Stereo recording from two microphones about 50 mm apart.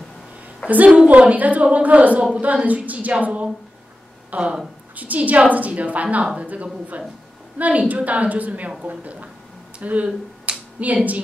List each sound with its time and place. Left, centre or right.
0.7 s a woman's voice: right
4.9 s a woman's voice: right